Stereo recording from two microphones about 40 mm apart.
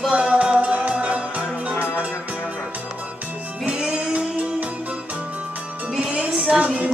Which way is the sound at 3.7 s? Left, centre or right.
Centre.